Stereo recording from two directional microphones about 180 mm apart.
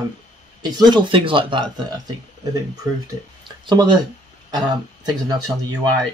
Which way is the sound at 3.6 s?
25° right (ahead or behind).